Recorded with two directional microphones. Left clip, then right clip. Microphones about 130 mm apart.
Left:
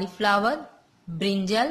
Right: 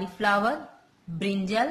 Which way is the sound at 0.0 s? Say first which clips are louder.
Left 2 dB; 20° left (ahead or behind).